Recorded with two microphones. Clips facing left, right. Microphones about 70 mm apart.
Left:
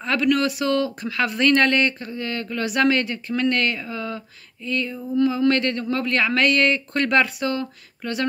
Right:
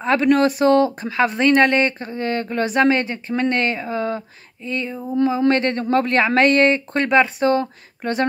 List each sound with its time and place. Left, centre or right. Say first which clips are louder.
0.0 s speech: right 5 dB; right